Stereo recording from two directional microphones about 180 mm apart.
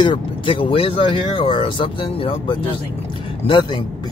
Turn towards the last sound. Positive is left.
turn(degrees=25)  # may be behind; listen again after turning